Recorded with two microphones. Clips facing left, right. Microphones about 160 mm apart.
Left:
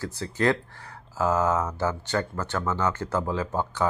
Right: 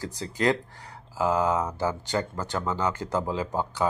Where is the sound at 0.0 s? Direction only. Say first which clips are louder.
Left 1 dB; 15° right (ahead or behind).